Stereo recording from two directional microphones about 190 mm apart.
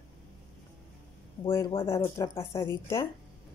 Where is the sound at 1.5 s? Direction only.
15° left (ahead or behind).